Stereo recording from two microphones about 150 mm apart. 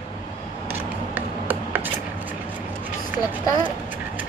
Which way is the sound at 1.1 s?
10° right (ahead or behind).